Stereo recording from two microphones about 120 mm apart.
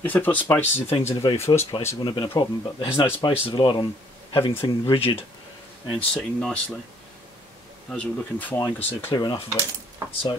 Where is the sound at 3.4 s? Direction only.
40° left (ahead or behind).